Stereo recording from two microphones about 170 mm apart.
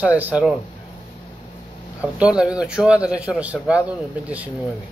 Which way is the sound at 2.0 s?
5° right (ahead or behind).